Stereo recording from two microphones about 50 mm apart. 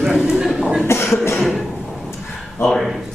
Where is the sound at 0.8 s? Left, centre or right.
Left.